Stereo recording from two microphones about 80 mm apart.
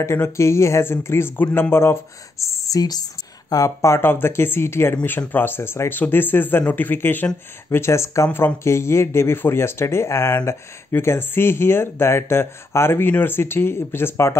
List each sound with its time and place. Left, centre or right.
0.0 s speech: left